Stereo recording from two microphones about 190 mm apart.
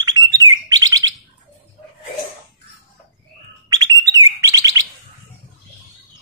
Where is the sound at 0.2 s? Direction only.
20° left (ahead or behind).